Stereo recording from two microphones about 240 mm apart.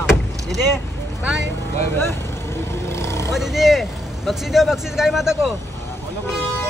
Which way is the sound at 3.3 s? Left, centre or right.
Centre.